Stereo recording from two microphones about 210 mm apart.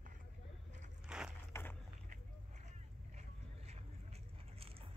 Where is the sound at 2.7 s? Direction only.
30° right (ahead or behind).